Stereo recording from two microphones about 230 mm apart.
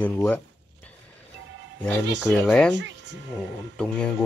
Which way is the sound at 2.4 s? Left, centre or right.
Centre.